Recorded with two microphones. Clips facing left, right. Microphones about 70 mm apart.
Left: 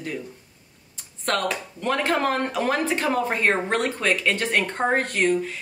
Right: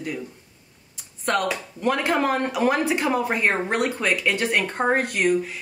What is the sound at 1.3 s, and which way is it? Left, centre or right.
Speech, centre.